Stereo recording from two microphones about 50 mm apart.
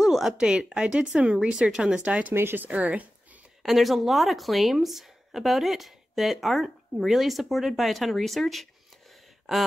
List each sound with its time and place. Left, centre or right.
0.0 s a sound: centre
0.4 s speech: centre
2.3 s speech: right
2.6 s speech: right
3.6 s speech: centre
9.1 s a sound: centre